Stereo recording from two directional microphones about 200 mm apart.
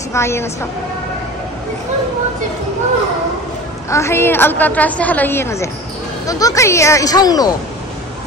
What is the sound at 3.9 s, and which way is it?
A woman's voice, 15° left (ahead or behind).